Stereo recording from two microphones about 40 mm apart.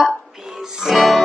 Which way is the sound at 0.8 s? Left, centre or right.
Centre.